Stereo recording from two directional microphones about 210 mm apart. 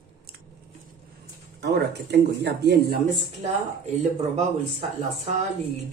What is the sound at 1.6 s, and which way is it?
Speech, 55° right (ahead or behind).